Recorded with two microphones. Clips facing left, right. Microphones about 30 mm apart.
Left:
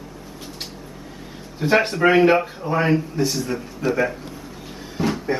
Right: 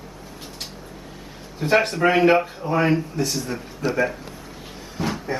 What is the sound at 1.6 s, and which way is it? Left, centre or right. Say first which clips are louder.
Speech: left 1 dB; centre.